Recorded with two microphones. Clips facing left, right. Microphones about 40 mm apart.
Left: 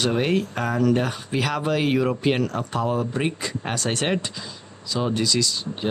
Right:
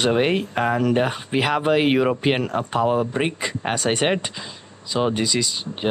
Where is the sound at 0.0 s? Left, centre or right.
Right.